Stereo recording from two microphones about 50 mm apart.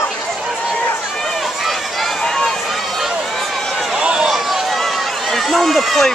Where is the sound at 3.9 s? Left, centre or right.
Centre.